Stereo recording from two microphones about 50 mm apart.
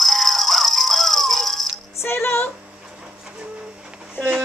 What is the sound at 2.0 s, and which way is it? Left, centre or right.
Music, left.